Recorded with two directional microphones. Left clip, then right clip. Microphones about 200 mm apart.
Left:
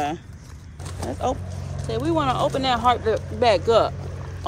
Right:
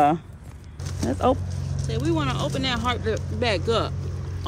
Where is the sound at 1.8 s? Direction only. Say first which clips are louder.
Left 4 dB; 5° left (ahead or behind).